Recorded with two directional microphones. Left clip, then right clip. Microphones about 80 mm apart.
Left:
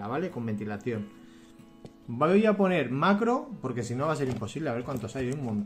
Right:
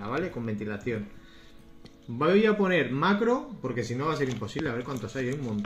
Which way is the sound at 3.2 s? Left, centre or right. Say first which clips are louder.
Right 1 dB; left.